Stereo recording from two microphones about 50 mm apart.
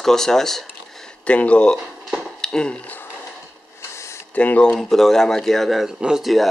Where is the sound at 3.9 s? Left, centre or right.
Left.